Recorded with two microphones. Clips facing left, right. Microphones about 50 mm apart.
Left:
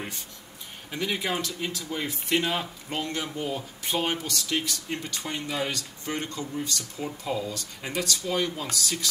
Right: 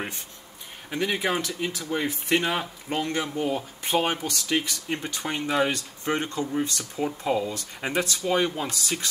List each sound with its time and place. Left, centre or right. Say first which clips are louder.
0.8 s speech: right 3 dB; right